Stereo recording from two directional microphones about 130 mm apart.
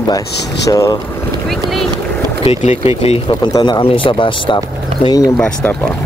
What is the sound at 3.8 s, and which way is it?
Speech, 40° left (ahead or behind).